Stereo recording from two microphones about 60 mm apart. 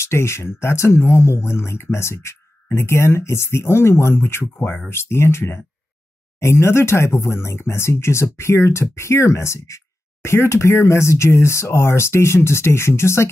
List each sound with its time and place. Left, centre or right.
0.0 s speech: left